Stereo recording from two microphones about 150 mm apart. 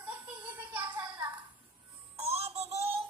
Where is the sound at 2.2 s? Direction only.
45° right (ahead or behind).